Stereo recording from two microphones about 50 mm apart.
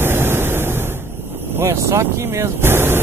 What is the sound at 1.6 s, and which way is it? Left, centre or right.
Speech, right.